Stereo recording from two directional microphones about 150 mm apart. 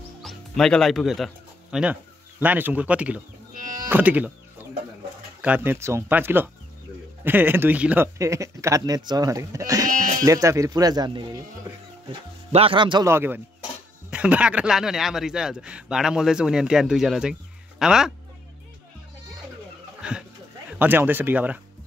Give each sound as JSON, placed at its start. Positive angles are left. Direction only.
{"t": 0.2, "sound": "speech", "side_deg": 5}
{"t": 3.5, "sound": "music", "side_deg": -65}
{"t": 3.9, "sound": "speech", "side_deg": -10}
{"t": 5.4, "sound": "speech", "side_deg": -10}
{"t": 13.0, "sound": "speech", "side_deg": -15}
{"t": 20.0, "sound": "a sound", "side_deg": -5}
{"t": 20.8, "sound": "speech", "side_deg": -15}